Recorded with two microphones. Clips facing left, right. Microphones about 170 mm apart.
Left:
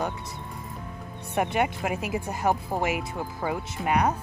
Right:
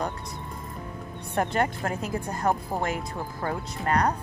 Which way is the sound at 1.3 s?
5° left (ahead or behind).